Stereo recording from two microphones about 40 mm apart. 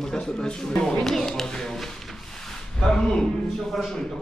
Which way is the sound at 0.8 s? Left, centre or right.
Centre.